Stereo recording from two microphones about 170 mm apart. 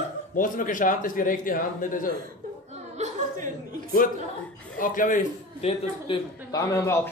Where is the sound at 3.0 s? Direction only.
50° right (ahead or behind).